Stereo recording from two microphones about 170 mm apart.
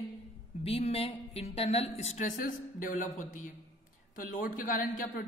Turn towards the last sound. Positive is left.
turn(degrees=50)  # may be behind; listen again after turning